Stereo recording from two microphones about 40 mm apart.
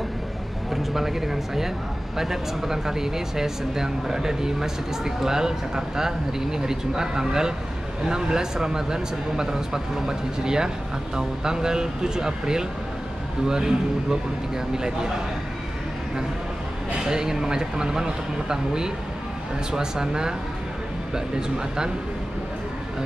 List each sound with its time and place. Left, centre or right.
0.9 s speech: centre
17.0 s speech: centre